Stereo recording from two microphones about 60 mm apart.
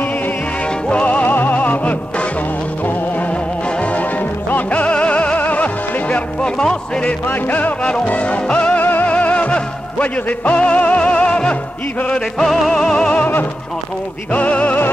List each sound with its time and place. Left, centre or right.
0.7 s music: centre
7.2 s music: left
8.8 s music: left; by 13.1 s centre
14.3 s music: left